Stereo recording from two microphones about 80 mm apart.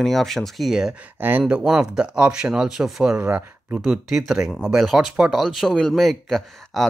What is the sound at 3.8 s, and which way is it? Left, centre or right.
Speech, centre.